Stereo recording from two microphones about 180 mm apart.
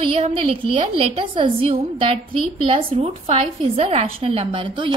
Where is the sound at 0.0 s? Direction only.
30° right (ahead or behind).